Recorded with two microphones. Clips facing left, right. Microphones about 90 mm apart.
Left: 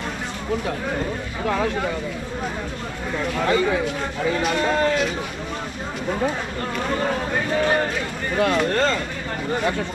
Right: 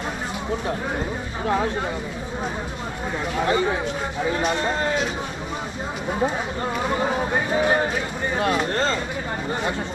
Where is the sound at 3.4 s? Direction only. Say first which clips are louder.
Left 1 dB; 25° right (ahead or behind).